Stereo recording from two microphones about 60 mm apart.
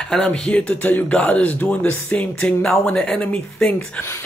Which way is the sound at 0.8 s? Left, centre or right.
Left.